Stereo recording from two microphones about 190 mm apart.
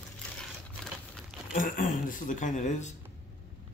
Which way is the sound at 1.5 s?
45° left (ahead or behind).